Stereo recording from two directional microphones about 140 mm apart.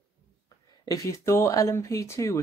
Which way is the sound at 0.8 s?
25° left (ahead or behind).